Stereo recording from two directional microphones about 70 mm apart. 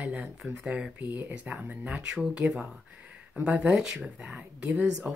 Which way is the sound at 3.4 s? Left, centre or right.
Centre.